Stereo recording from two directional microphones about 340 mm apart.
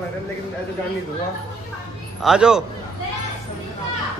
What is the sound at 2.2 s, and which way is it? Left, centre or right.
Speech, centre.